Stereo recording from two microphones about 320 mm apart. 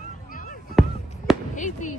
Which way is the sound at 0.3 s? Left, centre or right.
Left.